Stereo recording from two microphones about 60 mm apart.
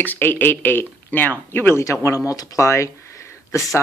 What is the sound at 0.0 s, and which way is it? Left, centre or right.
Speech, left.